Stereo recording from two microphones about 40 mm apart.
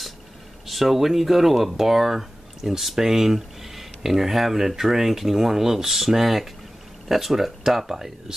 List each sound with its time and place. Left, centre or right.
0.7 s speech: centre